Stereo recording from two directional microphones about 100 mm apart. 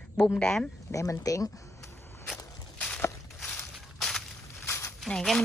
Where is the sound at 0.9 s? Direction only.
35° left (ahead or behind).